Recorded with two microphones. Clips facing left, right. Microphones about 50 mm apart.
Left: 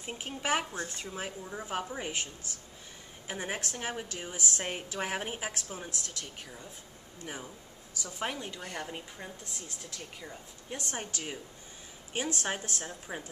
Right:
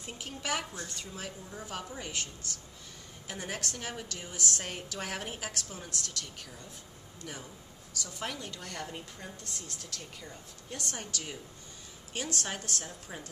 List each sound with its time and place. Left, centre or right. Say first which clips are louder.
0.0 s a woman's voice: left 3 dB; left
3.3 s a woman's voice: left 2 dB; left
8.0 s a woman's voice: left 3 dB; left